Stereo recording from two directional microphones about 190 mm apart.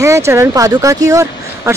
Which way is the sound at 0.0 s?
15° right (ahead or behind).